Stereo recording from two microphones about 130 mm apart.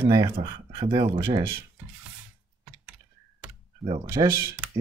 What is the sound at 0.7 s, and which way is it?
Speech, 35° right (ahead or behind).